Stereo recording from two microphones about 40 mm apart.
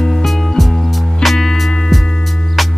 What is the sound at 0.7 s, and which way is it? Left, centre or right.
Music, centre.